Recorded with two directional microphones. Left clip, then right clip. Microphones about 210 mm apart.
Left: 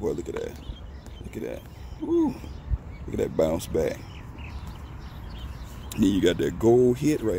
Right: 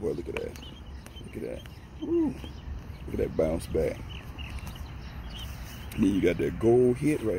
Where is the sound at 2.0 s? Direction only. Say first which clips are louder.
Left 3 dB; 25° left (ahead or behind).